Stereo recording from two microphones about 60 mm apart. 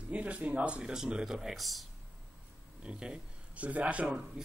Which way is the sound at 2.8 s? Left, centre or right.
Centre.